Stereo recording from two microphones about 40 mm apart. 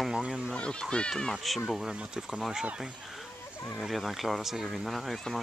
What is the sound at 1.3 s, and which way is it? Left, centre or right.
Speech, centre.